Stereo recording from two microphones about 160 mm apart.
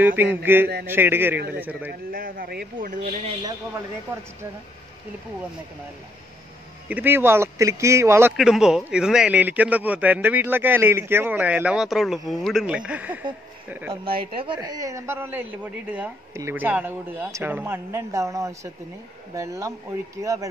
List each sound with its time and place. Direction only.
0.0 s a man's voice: 10° right (ahead or behind)
2.1 s speech: 65° right (ahead or behind)
2.9 s speech: 50° right (ahead or behind)
6.9 s a man's voice: 10° right (ahead or behind)
8.3 s a man's voice: 5° right (ahead or behind)
14.1 s a man's voice: 35° right (ahead or behind); by 20.4 s 20° right (ahead or behind)